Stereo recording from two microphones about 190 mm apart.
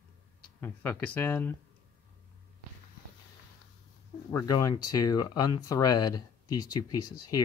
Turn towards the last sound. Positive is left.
turn(degrees=20)  # may be behind; listen again after turning